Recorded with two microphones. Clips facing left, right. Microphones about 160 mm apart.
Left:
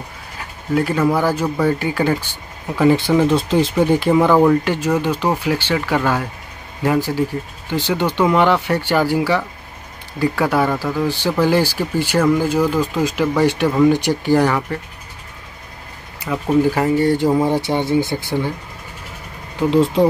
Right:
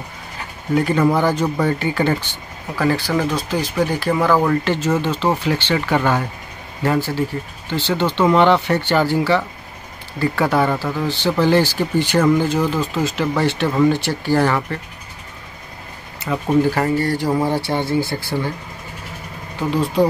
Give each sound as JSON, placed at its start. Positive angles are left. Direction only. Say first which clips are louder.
{"t": 0.7, "sound": "speech", "louder": "even", "side_deg": 5}
{"t": 16.7, "sound": "speech", "louder": "left 3 dB", "side_deg": 15}
{"t": 19.7, "sound": "speech", "louder": "left 3 dB", "side_deg": 25}